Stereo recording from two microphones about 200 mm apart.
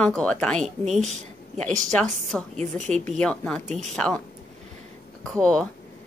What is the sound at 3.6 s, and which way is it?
Speech, 35° right (ahead or behind).